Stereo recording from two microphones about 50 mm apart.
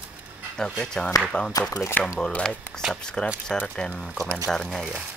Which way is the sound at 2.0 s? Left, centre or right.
Left.